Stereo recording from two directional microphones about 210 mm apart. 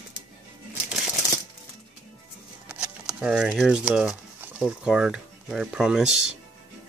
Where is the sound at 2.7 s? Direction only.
5° right (ahead or behind).